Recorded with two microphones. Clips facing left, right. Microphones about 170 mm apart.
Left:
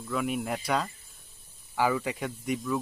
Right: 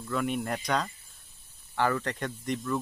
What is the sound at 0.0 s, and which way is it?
Speech, 5° left (ahead or behind).